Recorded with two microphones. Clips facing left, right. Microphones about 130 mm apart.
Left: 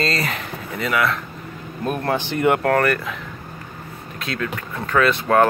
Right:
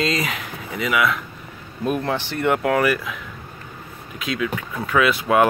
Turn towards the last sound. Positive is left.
turn(degrees=-5)  # may be behind; listen again after turning